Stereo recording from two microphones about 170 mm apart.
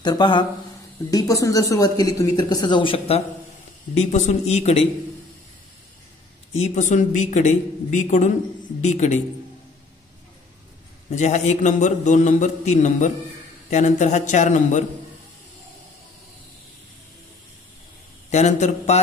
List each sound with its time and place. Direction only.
0.0 s speech: 25° left (ahead or behind)
3.9 s a man's voice: 40° left (ahead or behind)
6.5 s speech: 40° left (ahead or behind)
11.1 s speech: 45° left (ahead or behind)
18.3 s a man's voice: 40° left (ahead or behind)